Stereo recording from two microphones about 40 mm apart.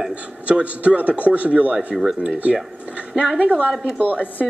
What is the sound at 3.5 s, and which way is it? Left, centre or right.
Speech, right.